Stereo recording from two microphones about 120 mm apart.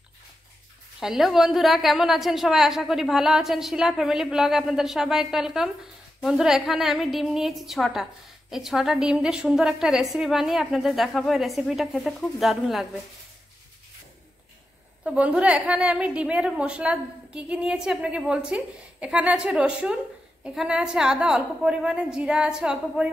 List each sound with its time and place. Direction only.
0.9 s a woman's voice: centre (ahead or behind)
15.0 s a woman's voice: 10° right (ahead or behind)